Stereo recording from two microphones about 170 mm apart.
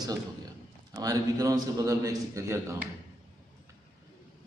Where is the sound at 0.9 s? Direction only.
20° right (ahead or behind).